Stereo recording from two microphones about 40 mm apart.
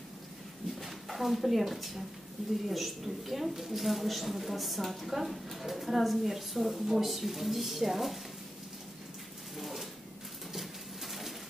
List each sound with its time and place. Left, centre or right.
0.7 s a woman's voice: centre
9.6 s a sound: centre
10.5 s bird: centre